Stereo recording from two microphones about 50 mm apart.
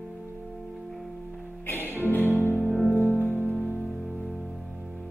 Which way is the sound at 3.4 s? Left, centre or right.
Right.